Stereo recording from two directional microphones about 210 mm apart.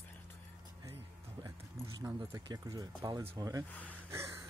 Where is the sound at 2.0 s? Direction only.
15° right (ahead or behind).